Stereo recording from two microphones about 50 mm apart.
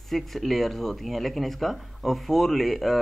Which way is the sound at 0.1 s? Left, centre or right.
Centre.